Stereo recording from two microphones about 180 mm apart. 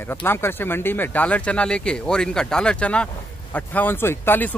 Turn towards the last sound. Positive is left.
turn(degrees=10)  # may be behind; listen again after turning